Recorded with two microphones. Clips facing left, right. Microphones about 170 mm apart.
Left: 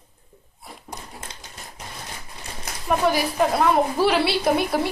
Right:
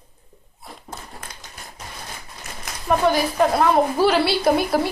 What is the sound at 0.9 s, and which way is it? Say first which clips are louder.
Typewriter: even; 25° left (ahead or behind).